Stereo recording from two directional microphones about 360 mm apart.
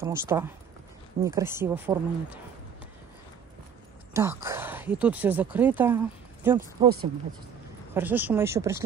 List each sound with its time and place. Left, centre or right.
0.0 s speech: centre
4.1 s speech: centre
7.9 s speech: centre